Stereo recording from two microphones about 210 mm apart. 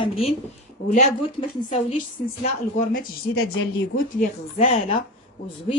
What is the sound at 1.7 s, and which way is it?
A woman's voice, 30° left (ahead or behind).